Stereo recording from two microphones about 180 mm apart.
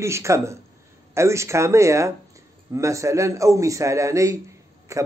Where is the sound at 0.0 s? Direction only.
15° right (ahead or behind).